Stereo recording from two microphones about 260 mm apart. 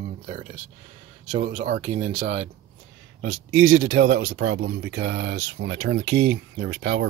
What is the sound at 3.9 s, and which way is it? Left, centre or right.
Speech, right.